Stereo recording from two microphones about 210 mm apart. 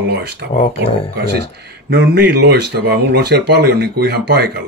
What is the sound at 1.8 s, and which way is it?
Speech, 55° right (ahead or behind).